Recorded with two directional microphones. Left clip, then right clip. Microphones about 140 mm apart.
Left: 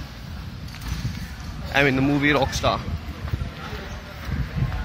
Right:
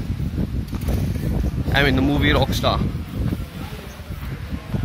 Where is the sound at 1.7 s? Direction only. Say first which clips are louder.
Right 1 dB; 40° right (ahead or behind).